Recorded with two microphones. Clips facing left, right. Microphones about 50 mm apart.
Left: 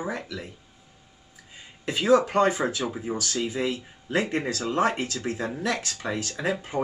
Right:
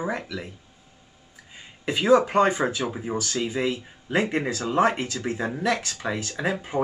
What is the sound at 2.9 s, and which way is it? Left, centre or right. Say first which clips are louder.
Speech: right 1 dB; centre.